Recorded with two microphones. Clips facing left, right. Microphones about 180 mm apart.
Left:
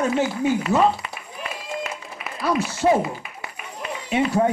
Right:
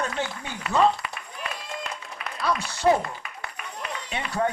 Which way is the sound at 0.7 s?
40° left (ahead or behind).